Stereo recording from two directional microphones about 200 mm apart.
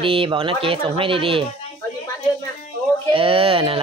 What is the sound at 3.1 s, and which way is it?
Speech, 25° right (ahead or behind).